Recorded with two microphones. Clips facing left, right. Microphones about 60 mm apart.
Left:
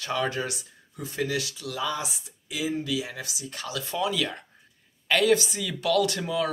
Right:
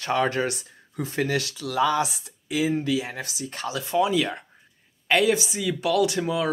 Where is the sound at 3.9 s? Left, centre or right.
Right.